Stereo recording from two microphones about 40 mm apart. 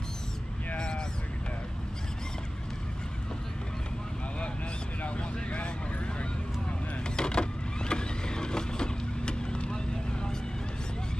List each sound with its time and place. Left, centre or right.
0.7 s a sound: left
5.0 s vehicle: left
7.2 s power windows: left